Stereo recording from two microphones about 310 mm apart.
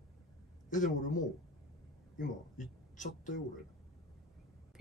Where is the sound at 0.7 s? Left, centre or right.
Left.